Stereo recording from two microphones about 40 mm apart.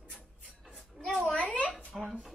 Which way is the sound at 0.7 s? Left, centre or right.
Centre.